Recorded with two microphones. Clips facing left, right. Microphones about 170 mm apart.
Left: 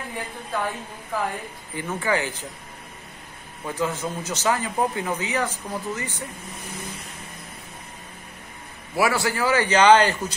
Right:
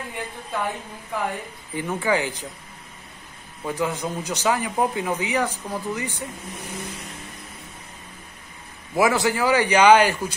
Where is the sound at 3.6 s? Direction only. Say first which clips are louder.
Right 1 dB; 15° right (ahead or behind).